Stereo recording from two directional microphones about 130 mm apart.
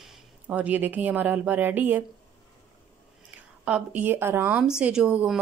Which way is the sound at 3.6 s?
10° right (ahead or behind).